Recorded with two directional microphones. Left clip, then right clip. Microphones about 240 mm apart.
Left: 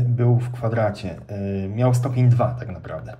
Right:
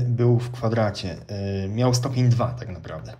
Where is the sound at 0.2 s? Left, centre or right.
Centre.